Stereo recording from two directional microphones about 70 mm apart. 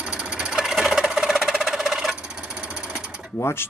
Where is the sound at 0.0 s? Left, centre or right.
Centre.